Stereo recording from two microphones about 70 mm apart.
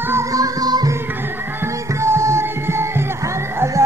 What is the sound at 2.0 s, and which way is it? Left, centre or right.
Music, right.